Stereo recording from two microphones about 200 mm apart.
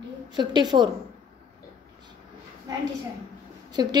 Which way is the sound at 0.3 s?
20° right (ahead or behind).